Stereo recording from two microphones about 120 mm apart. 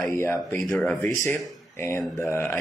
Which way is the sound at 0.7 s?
15° left (ahead or behind).